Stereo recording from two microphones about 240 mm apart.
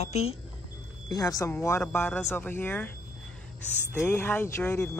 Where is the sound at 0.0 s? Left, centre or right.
Left.